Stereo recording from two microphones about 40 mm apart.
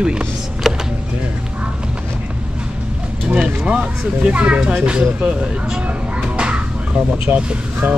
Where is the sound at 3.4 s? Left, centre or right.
Right.